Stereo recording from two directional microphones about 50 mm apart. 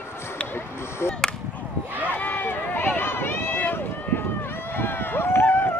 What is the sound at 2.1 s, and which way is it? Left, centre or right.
Run, left.